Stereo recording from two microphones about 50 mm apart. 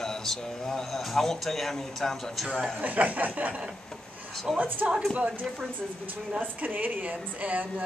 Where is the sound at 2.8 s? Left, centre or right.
Right.